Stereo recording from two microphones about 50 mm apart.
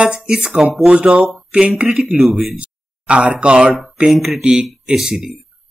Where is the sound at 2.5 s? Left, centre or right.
Right.